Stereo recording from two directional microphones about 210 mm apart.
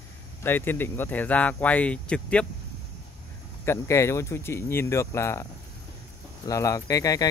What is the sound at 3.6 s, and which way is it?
Speech, 15° left (ahead or behind).